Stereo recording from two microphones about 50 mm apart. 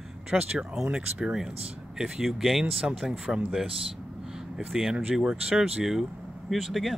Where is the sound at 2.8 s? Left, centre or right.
Centre.